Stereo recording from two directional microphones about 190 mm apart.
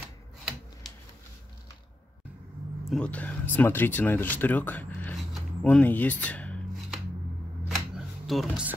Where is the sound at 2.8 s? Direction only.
5° left (ahead or behind).